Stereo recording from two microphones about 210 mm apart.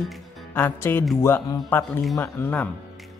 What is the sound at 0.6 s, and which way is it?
A woman's voice, 10° left (ahead or behind).